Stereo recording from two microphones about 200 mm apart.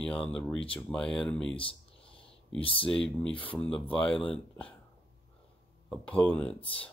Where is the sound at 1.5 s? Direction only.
25° left (ahead or behind).